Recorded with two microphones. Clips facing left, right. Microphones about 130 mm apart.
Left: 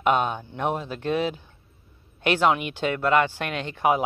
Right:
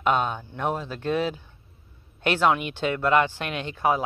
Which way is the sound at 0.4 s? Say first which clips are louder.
Left 1 dB; 15° left (ahead or behind).